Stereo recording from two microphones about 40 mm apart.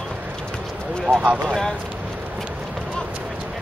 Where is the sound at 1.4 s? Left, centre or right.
Centre.